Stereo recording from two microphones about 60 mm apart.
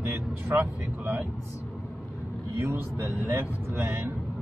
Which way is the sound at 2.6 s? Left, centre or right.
Right.